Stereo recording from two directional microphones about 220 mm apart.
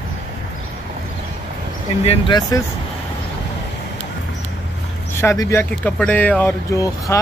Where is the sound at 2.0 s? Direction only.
20° left (ahead or behind).